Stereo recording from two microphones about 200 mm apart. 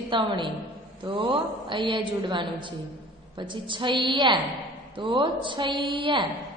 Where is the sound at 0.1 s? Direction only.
25° right (ahead or behind).